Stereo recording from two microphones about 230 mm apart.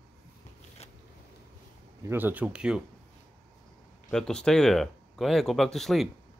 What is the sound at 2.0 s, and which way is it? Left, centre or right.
Speech, centre.